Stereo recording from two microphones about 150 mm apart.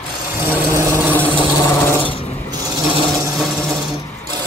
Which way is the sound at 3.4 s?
5° left (ahead or behind).